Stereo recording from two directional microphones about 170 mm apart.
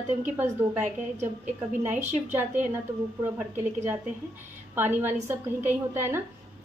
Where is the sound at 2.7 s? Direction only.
15° right (ahead or behind).